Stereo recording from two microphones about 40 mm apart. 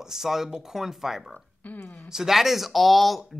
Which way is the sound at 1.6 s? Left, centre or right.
Left.